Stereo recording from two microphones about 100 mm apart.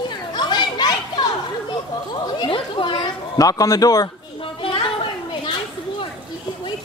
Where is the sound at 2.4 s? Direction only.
55° left (ahead or behind).